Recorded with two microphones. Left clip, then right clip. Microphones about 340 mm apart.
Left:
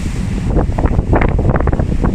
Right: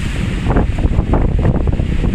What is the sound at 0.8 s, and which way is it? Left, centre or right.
Wind noise, left.